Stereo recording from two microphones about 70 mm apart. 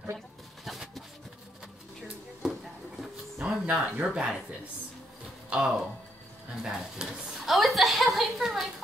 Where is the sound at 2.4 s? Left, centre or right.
Centre.